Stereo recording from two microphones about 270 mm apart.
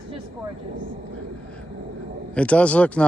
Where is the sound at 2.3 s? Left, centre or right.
Centre.